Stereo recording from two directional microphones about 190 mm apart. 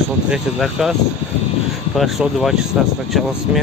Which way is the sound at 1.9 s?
Centre (ahead or behind).